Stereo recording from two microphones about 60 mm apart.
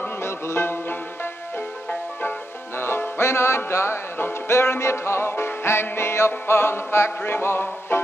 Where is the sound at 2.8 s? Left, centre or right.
Left.